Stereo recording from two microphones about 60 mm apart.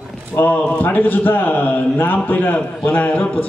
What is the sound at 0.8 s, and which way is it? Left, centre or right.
A man's voice, left.